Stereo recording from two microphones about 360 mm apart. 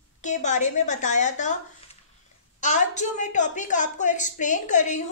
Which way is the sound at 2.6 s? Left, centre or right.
Centre.